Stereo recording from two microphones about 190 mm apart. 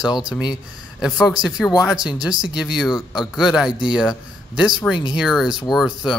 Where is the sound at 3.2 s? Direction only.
Centre (ahead or behind).